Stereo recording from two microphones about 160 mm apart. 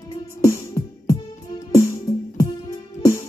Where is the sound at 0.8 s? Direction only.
20° left (ahead or behind).